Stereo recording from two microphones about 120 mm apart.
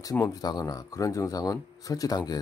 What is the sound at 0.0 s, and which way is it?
Speech, 30° left (ahead or behind).